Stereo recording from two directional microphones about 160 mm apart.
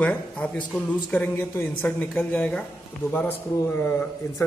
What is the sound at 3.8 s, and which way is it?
Speech, 15° left (ahead or behind).